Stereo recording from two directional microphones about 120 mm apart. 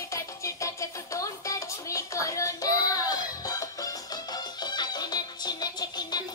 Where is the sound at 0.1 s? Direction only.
25° left (ahead or behind).